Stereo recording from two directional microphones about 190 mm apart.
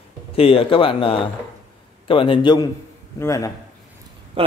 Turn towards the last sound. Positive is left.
turn(degrees=15)  # may be behind; listen again after turning